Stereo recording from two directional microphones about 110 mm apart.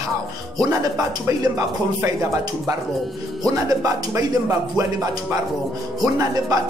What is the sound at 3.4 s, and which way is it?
Speech, 30° right (ahead or behind).